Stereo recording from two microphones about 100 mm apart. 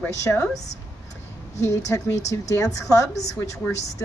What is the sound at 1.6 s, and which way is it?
A woman's voice, 30° left (ahead or behind).